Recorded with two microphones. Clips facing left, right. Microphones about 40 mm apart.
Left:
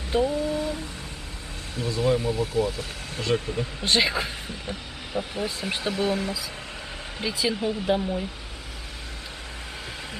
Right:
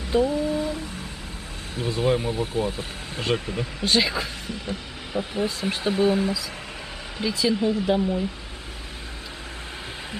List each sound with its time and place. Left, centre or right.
0.1 s speech: centre
0.5 s humming: right
1.8 s speech: right
3.8 s speech: centre
5.1 s speech: centre
5.9 s speech: right
7.2 s speech: centre